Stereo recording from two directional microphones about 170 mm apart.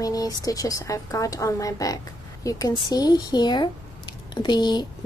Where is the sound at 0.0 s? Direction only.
20° left (ahead or behind).